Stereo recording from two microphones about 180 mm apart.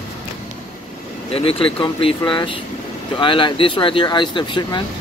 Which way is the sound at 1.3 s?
30° left (ahead or behind).